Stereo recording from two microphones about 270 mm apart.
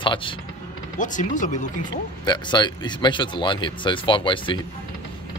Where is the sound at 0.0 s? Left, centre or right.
Centre.